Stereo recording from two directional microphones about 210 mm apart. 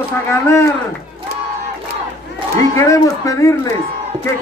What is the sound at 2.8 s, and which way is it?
Speech, 15° left (ahead or behind).